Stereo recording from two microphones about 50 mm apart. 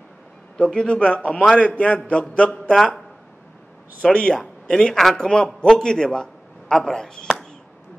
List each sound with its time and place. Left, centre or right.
0.6 s a man's voice: centre
2.7 s speech: centre
4.0 s a man's voice: centre